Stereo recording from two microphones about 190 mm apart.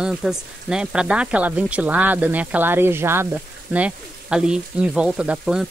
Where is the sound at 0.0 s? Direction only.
5° right (ahead or behind).